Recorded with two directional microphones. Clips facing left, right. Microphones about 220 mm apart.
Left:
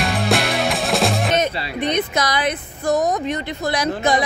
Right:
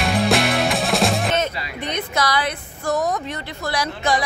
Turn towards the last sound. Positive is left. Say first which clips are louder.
# left 3 dB
turn(degrees=20)  # may be behind; listen again after turning